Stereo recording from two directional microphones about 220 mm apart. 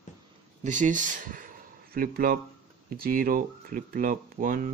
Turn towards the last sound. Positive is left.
turn(degrees=-40)  # may be behind; listen again after turning